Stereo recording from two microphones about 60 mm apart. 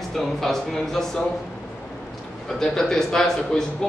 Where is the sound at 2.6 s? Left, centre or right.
Centre.